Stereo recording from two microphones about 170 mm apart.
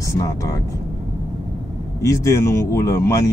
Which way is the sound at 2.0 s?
20° left (ahead or behind).